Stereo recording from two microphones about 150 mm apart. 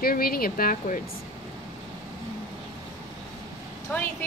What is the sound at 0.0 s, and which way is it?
Speech, 80° left.